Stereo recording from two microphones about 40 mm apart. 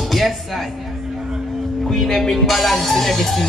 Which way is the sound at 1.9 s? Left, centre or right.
Centre.